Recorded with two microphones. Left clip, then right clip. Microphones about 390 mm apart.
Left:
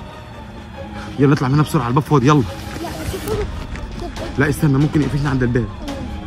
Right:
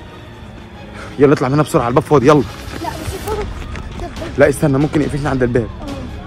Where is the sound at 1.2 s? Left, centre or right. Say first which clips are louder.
Right 5 dB; centre.